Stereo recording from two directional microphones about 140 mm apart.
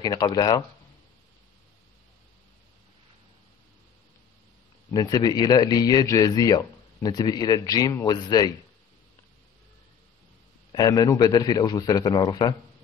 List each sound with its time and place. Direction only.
0.0 s speech: 30° left (ahead or behind)
4.9 s speech: 25° left (ahead or behind)
10.7 s speech: 25° left (ahead or behind)